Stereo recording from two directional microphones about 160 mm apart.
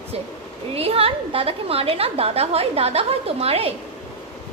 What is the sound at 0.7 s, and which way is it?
A woman's voice, 35° right (ahead or behind).